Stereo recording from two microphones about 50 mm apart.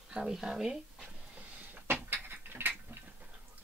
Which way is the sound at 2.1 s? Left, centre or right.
Right.